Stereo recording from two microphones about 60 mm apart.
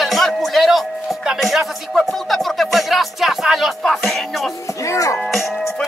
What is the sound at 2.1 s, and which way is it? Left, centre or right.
Speech, centre.